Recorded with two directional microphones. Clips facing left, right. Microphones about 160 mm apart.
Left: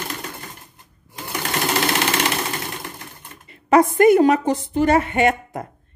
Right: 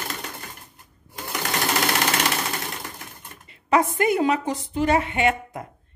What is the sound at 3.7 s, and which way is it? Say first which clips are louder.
A woman's voice: left 7 dB; 45° left (ahead or behind).